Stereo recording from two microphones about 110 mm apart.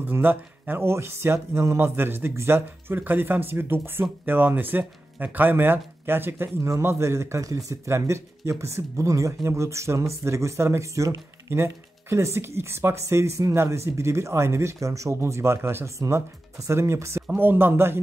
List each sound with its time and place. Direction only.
0.0 s speech: 20° right (ahead or behind)